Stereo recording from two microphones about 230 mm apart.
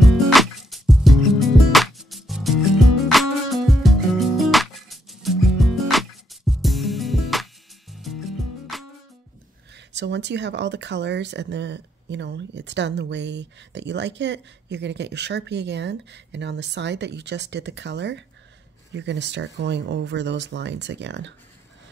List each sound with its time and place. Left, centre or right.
0.0 s music: centre
9.9 s speech: right